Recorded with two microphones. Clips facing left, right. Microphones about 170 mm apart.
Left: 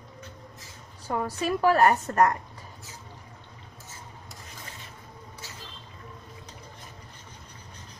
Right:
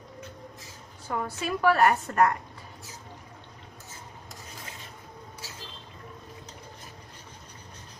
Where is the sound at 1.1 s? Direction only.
35° left (ahead or behind).